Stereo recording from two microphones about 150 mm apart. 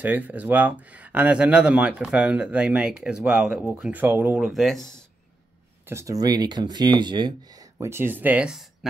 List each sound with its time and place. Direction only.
0.0 s speech: 10° right (ahead or behind)
5.9 s speech: 20° right (ahead or behind)